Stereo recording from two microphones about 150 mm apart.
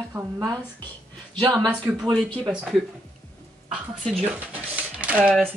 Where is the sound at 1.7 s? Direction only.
5° right (ahead or behind).